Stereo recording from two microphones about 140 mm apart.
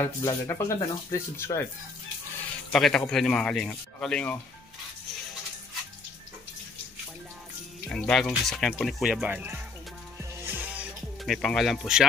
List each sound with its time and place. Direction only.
0.0 s speech: 25° left (ahead or behind)
2.7 s speech: 5° left (ahead or behind)
7.9 s speech: 5° left (ahead or behind)
9.0 s speech: 5° right (ahead or behind)
10.1 s music: 15° right (ahead or behind)